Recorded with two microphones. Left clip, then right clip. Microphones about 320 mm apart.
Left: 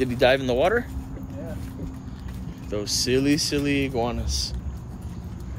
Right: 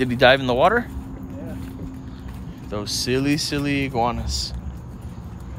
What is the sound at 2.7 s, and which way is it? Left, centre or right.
Speech, centre.